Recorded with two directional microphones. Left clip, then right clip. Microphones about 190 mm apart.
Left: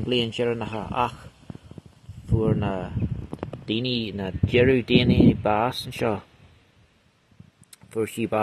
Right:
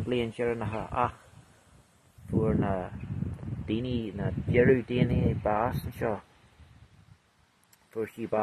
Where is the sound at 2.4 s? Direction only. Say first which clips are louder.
Left 3 dB; 35° left (ahead or behind).